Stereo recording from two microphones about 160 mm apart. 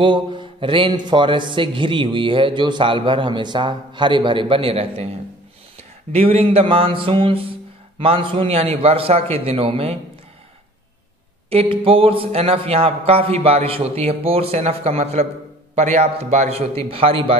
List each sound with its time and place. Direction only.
0.0 s a man's voice: 30° right (ahead or behind)
6.1 s a man's voice: 40° right (ahead or behind)
11.5 s a man's voice: 35° right (ahead or behind)